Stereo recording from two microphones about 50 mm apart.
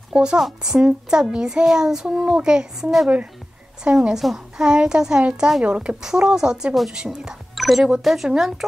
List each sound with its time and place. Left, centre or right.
0.1 s a child's voice: centre
4.1 s a woman's voice: centre
4.6 s a child's voice: centre
7.5 s a child's voice: centre